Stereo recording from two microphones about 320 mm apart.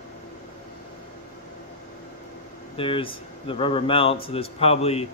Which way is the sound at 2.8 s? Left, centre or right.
Centre.